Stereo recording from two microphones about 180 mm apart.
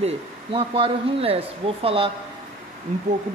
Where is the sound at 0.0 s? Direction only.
30° right (ahead or behind).